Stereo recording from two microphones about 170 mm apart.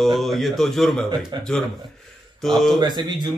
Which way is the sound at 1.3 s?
25° right (ahead or behind).